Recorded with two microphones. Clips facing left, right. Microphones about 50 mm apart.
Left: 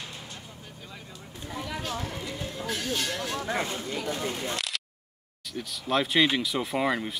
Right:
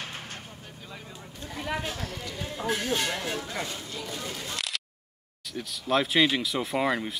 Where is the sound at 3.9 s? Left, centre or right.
Left.